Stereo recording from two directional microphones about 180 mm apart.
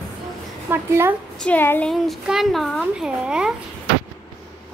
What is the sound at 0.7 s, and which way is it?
Speech, 15° right (ahead or behind).